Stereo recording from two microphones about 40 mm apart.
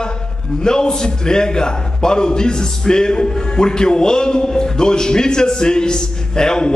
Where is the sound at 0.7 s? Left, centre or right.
Centre.